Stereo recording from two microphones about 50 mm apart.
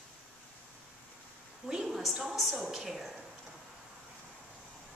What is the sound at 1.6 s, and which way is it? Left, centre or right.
A woman's voice, centre.